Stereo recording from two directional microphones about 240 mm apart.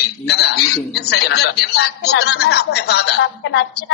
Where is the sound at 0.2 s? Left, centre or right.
Left.